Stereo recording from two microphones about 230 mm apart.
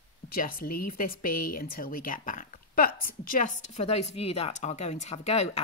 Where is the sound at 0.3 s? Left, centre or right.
Left.